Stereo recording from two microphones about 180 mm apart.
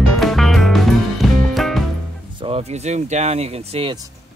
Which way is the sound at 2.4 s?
35° right (ahead or behind).